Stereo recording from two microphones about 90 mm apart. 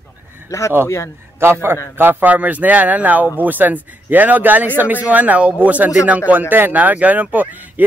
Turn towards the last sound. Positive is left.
turn(degrees=-20)  # may be behind; listen again after turning